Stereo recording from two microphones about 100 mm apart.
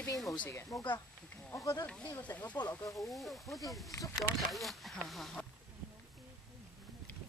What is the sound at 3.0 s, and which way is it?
Speech, centre (ahead or behind).